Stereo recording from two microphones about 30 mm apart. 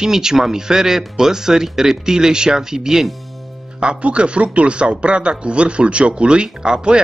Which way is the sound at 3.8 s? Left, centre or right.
Right.